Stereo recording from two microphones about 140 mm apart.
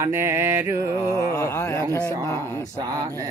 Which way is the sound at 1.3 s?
20° left (ahead or behind).